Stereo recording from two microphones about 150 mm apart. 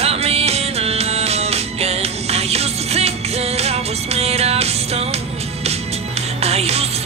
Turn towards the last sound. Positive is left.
turn(degrees=-45)  # may be behind; listen again after turning